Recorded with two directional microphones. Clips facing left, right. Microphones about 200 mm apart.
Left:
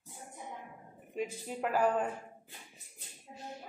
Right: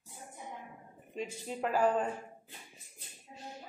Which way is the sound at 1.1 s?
10° left (ahead or behind).